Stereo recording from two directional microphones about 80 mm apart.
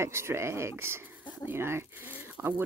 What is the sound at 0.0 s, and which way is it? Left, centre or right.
Speech, right.